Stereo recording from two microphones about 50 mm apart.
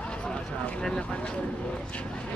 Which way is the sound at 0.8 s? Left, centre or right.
Centre.